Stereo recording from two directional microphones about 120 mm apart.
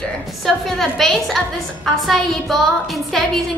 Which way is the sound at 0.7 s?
Centre (ahead or behind).